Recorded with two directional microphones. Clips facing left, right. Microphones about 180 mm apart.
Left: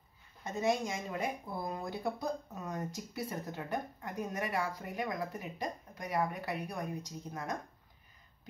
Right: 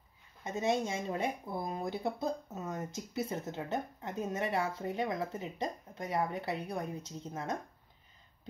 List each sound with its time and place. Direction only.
0.4 s speech: 20° right (ahead or behind)